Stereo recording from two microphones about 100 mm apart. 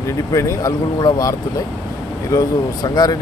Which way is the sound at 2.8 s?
40° left (ahead or behind).